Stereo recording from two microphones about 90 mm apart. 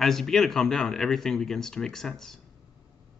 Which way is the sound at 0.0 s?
5° left (ahead or behind).